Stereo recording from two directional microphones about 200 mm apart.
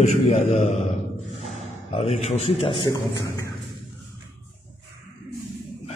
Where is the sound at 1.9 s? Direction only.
30° left (ahead or behind).